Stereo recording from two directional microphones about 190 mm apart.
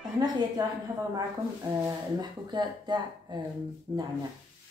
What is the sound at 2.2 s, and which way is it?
Speech, 20° right (ahead or behind).